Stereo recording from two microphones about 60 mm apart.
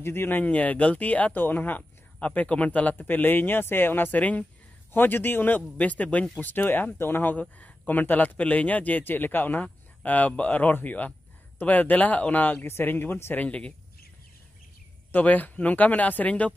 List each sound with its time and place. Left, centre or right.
0.0 s a man's voice: left
0.4 s a man's voice: left
4.2 s a man's voice: left
4.9 s a man's voice: left
13.4 s a man's voice: left
15.1 s a man's voice: left